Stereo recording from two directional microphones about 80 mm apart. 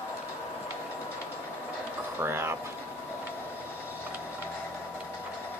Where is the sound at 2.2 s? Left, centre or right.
Right.